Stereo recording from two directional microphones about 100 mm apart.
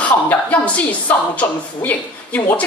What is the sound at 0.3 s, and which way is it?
A woman's voice, 15° left (ahead or behind).